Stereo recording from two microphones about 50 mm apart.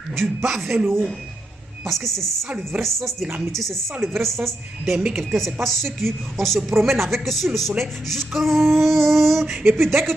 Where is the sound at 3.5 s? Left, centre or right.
Centre.